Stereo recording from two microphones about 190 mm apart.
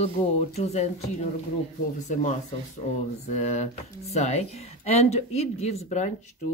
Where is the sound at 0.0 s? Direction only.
35° left (ahead or behind).